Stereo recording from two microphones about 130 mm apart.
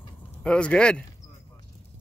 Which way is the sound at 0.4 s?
10° left (ahead or behind).